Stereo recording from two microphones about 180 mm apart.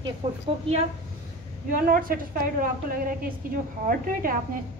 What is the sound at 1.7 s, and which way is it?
A woman's voice, 50° right (ahead or behind).